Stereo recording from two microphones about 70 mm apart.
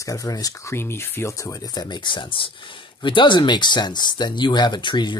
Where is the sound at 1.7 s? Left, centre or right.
Left.